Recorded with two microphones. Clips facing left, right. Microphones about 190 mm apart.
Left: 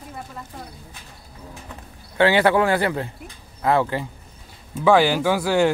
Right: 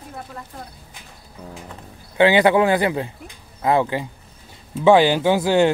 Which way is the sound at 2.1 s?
15° right (ahead or behind).